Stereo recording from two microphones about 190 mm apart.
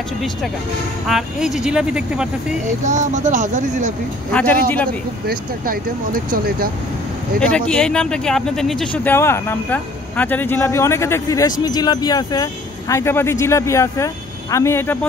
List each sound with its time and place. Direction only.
1.0 s speech: centre (ahead or behind)
2.6 s speech: 40° right (ahead or behind)
4.3 s speech: 10° left (ahead or behind)
5.2 s speech: 50° right (ahead or behind)
7.3 s speech: 5° left (ahead or behind)